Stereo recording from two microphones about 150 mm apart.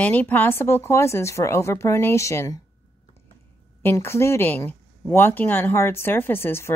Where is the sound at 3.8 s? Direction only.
15° left (ahead or behind).